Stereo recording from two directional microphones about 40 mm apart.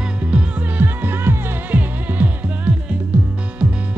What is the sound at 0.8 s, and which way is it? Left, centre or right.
Music, right.